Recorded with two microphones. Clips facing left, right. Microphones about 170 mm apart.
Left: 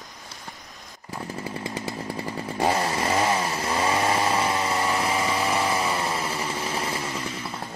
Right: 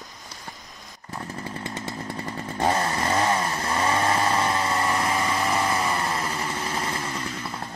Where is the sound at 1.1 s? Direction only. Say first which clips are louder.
Left 1 dB; 10° left (ahead or behind).